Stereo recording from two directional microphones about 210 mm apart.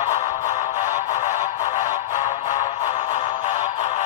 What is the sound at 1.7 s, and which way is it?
Music, 35° left (ahead or behind).